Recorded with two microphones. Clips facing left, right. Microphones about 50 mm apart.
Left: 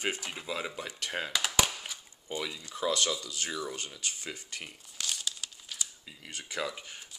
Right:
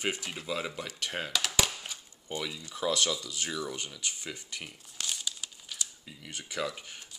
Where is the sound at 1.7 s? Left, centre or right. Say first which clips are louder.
Even; centre.